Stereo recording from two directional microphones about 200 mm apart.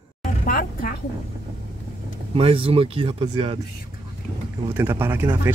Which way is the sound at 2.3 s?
30° right (ahead or behind).